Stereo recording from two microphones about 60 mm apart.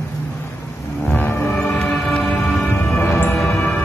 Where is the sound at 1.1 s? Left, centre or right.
Left.